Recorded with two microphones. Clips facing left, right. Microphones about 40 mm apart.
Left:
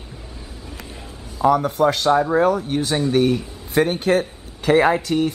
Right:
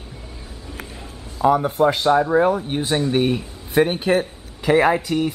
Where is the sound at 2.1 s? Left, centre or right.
Centre.